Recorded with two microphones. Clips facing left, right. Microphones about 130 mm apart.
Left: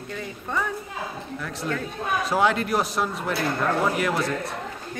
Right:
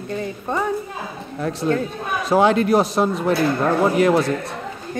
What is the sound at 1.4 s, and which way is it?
A woman's voice, 30° right (ahead or behind).